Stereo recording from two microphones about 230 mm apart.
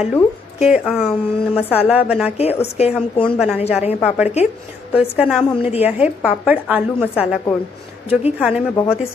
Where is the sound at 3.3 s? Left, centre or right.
Centre.